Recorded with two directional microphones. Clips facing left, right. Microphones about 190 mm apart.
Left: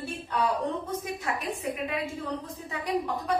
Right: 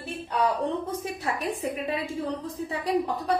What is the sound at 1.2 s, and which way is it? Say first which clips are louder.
A woman's voice: right 3 dB; 35° right (ahead or behind).